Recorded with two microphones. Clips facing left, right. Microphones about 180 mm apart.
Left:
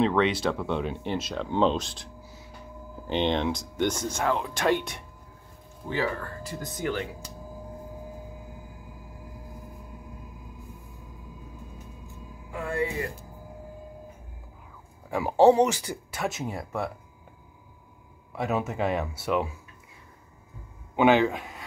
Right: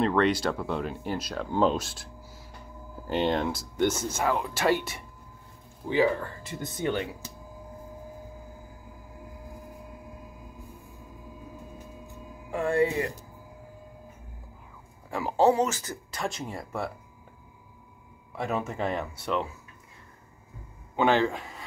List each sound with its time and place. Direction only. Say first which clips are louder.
0.0 s speech: left 1 dB; centre (ahead or behind)
3.1 s speech: left 1 dB; 5° right (ahead or behind)
5.9 s speech: right 5 dB; 15° right (ahead or behind)
12.4 s speech: right 5 dB; 30° right (ahead or behind)
15.1 s speech: left 4 dB; 15° left (ahead or behind); by 16.9 s centre (ahead or behind)
18.3 s speech: left 2 dB; centre (ahead or behind)
20.9 s speech: left 3 dB; 5° left (ahead or behind)